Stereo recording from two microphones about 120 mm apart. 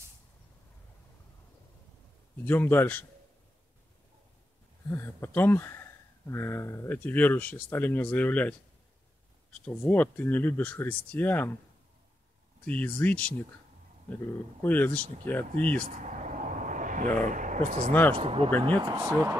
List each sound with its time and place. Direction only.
2.4 s speech: 15° left (ahead or behind)
4.9 s speech: 20° left (ahead or behind)
12.6 s speech: 10° left (ahead or behind)
14.6 s speech: 15° left (ahead or behind)
15.8 s a sound: 90° right
17.3 s speech: 90° right
18.1 s speech: 50° right (ahead or behind)
18.8 s speech: 35° right (ahead or behind)